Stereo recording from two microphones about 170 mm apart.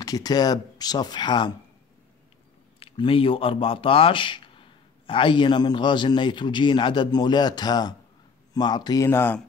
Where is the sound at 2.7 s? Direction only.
30° left (ahead or behind).